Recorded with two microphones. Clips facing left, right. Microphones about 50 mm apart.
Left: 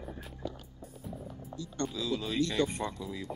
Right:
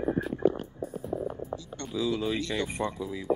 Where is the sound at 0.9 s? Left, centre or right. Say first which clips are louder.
Right 8 dB; right.